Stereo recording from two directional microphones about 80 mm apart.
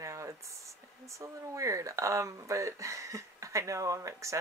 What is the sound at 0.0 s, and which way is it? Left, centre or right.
Speech, right.